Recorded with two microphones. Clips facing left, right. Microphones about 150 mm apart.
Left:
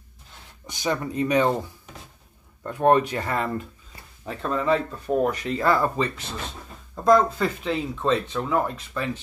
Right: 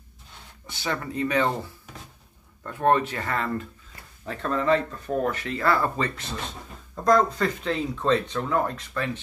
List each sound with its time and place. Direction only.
0.7 s speech: 15° left (ahead or behind)
2.6 s speech: 15° left (ahead or behind)